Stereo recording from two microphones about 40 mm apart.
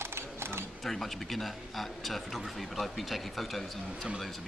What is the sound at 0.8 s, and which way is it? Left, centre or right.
A man's voice, centre.